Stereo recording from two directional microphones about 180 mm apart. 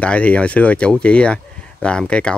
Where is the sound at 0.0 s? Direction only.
5° left (ahead or behind).